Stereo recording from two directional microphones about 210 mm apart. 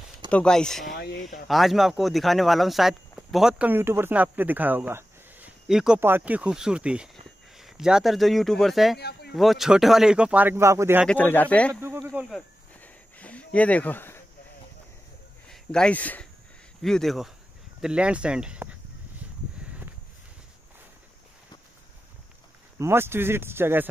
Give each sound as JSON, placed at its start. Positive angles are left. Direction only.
{"t": 0.3, "sound": "speech", "side_deg": 5}
{"t": 11.1, "sound": "speech", "side_deg": 10}
{"t": 11.8, "sound": "a sound", "side_deg": -10}
{"t": 12.3, "sound": "a sound", "side_deg": 5}
{"t": 15.5, "sound": "speech", "side_deg": 5}
{"t": 22.8, "sound": "a man's voice", "side_deg": -10}